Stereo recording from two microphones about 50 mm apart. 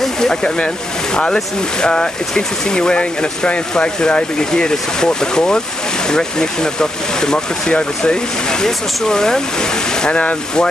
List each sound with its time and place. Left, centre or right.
0.0 s speech: centre